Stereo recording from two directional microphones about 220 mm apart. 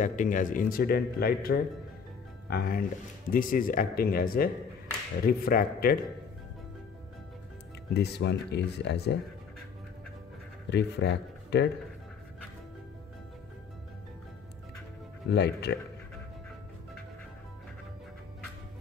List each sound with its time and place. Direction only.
0.0 s a man's voice: 35° left (ahead or behind)
7.9 s speech: 50° left (ahead or behind)
10.7 s speech: 50° left (ahead or behind)
15.2 s speech: 50° left (ahead or behind)